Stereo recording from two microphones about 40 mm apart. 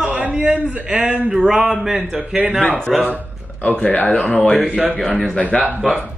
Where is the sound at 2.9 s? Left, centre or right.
Centre.